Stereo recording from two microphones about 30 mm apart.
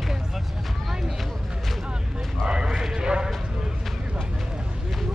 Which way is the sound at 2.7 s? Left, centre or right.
Centre.